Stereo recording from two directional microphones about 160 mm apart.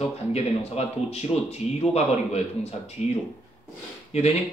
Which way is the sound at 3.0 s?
45° left (ahead or behind).